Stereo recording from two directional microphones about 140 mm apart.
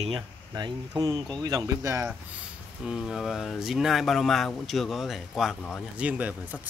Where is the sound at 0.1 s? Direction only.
30° right (ahead or behind).